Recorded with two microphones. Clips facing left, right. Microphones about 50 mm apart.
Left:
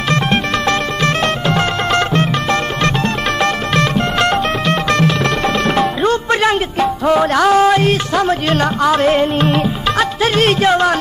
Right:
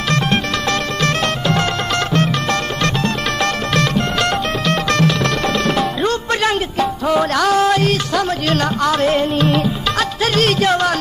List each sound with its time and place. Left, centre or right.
0.1 s music: left